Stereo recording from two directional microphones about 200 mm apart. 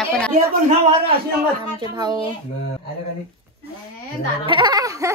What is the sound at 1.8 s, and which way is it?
Speech, 20° right (ahead or behind).